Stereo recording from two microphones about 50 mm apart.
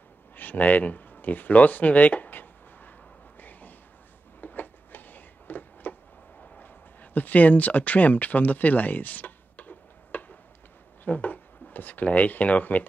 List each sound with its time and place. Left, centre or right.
0.4 s speech: left
3.3 s a sound: left
11.1 s speech: left